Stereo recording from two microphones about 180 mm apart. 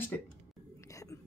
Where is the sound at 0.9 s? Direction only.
15° left (ahead or behind).